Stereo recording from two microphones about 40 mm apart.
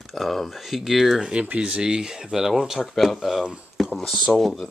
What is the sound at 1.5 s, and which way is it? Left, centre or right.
Speech, right.